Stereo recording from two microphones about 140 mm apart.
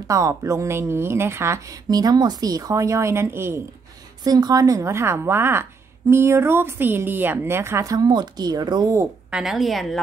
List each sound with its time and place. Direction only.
0.1 s a woman's voice: 20° right (ahead or behind)
4.2 s a woman's voice: 30° right (ahead or behind)
9.3 s a woman's voice: centre (ahead or behind)